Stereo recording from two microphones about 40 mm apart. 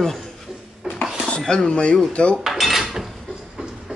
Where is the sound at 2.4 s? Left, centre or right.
Centre.